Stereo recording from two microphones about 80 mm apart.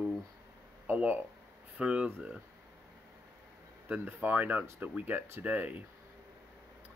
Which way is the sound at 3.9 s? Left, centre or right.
Right.